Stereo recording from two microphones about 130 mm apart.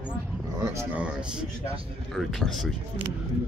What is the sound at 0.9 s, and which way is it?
Speech, 10° right (ahead or behind).